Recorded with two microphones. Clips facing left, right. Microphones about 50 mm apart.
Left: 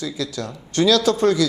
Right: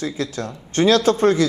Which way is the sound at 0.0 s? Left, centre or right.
Right.